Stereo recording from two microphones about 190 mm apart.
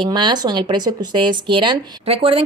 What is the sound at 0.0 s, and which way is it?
Speech, 25° right (ahead or behind).